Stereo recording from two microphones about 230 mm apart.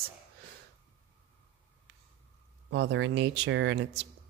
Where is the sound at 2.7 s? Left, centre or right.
Right.